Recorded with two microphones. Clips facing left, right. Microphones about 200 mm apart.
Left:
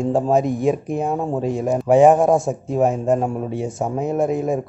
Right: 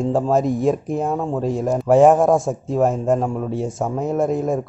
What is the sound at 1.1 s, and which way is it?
Speech, 15° left (ahead or behind).